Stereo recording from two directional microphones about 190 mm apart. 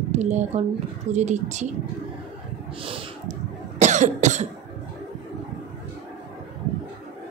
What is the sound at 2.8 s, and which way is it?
Cough, 35° right (ahead or behind).